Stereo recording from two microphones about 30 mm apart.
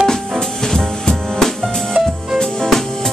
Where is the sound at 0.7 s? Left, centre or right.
Centre.